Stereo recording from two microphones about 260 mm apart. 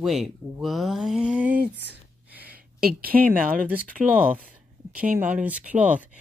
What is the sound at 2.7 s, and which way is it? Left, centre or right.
Speech, right.